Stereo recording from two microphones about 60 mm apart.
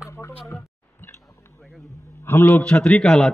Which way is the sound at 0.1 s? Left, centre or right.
Left.